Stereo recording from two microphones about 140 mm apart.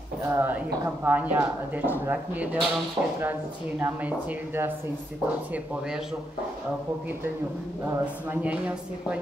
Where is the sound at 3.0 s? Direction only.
30° right (ahead or behind).